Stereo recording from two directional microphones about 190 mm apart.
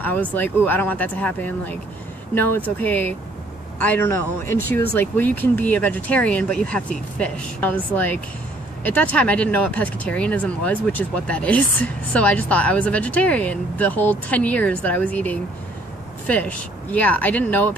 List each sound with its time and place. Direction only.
0.0 s speech: 10° left (ahead or behind)